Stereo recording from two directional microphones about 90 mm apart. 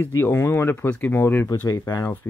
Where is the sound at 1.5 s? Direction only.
40° left (ahead or behind).